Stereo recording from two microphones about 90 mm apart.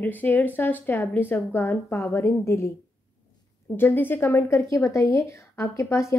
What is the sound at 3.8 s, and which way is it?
Speech, 20° left (ahead or behind).